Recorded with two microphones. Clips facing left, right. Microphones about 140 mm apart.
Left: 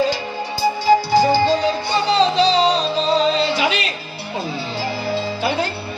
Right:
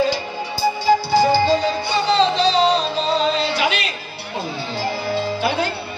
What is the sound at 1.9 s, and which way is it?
Music, 40° left (ahead or behind).